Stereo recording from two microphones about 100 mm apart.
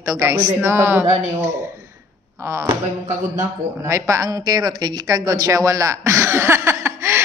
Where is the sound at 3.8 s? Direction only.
30° right (ahead or behind).